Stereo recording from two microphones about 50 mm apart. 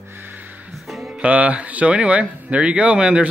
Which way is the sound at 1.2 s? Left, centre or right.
Right.